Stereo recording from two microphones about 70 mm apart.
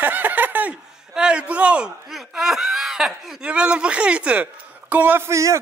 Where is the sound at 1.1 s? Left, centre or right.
Centre.